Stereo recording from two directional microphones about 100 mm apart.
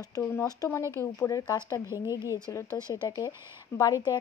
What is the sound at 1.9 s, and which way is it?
Speech, 50° left (ahead or behind).